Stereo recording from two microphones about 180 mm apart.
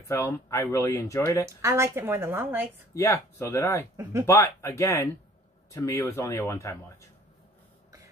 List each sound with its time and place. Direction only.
0.1 s speech: 15° left (ahead or behind)
1.4 s a woman's voice: 15° right (ahead or behind)
2.9 s speech: 15° left (ahead or behind)
3.9 s a woman's voice: 15° right (ahead or behind)
4.3 s speech: 15° left (ahead or behind)